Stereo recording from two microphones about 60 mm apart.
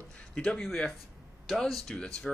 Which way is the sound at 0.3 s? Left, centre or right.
Centre.